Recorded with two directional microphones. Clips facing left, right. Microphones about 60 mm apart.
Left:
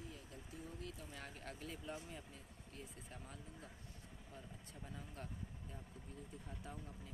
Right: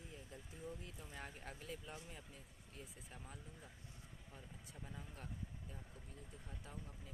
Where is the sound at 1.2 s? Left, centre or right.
Centre.